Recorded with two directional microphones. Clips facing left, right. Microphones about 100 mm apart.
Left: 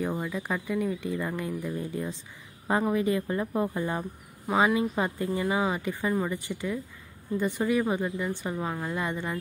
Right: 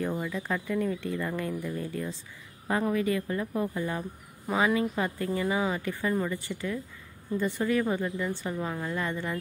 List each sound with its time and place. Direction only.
0.1 s speech: 15° left (ahead or behind)